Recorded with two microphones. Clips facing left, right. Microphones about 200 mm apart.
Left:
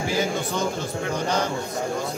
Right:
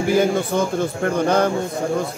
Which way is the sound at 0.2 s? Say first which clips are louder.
Right 6 dB; 55° right (ahead or behind).